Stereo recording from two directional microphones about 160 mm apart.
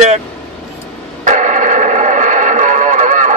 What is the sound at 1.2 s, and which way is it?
Radio, 50° right (ahead or behind).